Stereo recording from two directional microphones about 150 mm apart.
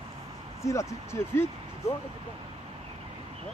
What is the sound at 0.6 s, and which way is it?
Speech, 20° left (ahead or behind).